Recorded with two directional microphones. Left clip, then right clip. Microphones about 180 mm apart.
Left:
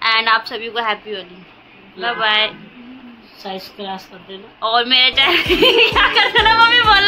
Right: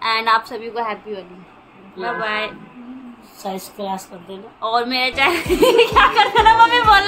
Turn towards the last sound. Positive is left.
turn(degrees=-15)  # may be behind; listen again after turning